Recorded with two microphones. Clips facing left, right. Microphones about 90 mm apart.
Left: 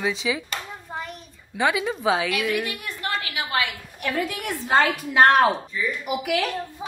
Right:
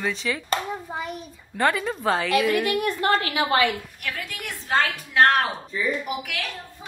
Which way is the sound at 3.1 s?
35° right (ahead or behind).